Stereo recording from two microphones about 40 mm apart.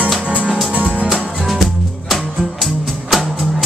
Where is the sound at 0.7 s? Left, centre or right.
Right.